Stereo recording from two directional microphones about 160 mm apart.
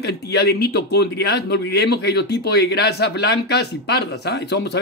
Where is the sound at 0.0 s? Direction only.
90° left.